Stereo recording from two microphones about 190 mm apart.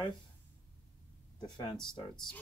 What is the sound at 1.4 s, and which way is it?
Speech, 25° left (ahead or behind).